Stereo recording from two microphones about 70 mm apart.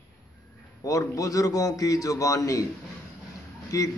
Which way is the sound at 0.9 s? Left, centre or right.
Left.